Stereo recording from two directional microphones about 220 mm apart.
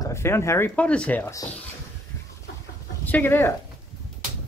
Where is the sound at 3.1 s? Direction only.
10° left (ahead or behind).